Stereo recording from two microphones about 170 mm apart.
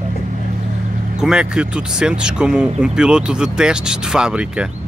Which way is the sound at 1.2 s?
5° right (ahead or behind).